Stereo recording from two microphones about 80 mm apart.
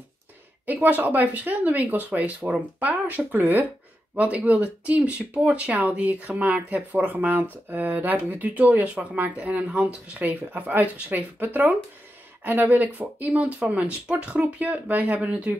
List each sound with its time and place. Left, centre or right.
0.7 s speech: centre